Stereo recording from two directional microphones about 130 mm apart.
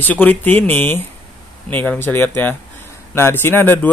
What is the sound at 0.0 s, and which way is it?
A man's voice, 15° left (ahead or behind).